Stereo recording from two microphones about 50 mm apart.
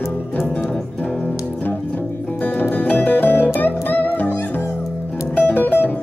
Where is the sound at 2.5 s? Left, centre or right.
Left.